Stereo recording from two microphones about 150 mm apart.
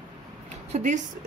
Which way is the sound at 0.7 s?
50° right (ahead or behind).